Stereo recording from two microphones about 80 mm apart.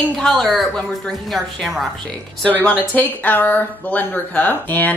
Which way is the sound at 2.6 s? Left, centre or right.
Left.